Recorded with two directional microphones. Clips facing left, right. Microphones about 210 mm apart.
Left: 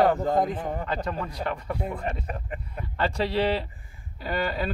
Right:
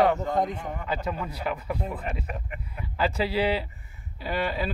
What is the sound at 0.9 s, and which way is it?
Speech, 5° right (ahead or behind).